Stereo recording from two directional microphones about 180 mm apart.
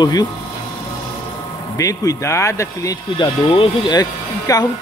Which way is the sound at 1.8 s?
20° left (ahead or behind).